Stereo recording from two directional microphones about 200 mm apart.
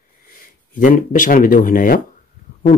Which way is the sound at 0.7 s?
40° left (ahead or behind).